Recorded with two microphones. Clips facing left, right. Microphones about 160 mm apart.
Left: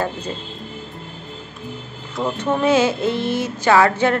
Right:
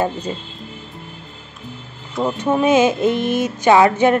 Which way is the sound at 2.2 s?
15° right (ahead or behind).